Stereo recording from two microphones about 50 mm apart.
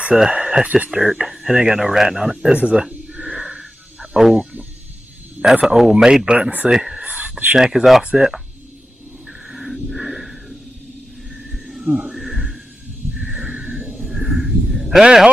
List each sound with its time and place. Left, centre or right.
0.1 s speech: centre
2.5 s a sound: centre
4.2 s speech: centre
5.4 s a man's voice: right
5.8 s speech: centre
6.2 s speech: centre
7.1 s whispering: right
7.5 s speech: centre
9.5 s a sound: centre
13.6 s a sound: right
13.9 s a sound: centre
15.0 s speech: centre